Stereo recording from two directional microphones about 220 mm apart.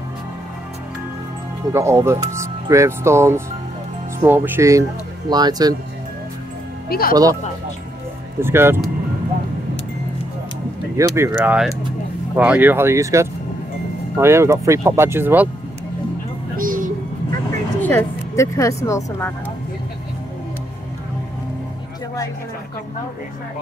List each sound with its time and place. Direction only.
1.7 s speech: 10° right (ahead or behind)
6.9 s speech: 40° left (ahead or behind)
8.4 s speech: 10° right (ahead or behind)
11.0 s speech: 10° right (ahead or behind)
16.5 s music: 40° right (ahead or behind)
17.8 s speech: 10° left (ahead or behind)